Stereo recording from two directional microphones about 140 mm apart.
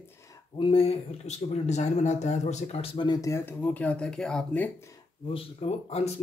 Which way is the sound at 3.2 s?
20° left (ahead or behind).